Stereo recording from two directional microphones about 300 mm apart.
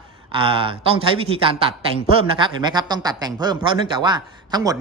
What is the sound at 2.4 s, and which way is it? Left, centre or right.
A man's voice, centre.